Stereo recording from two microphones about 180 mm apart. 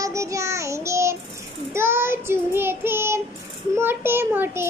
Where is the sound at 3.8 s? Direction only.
10° right (ahead or behind).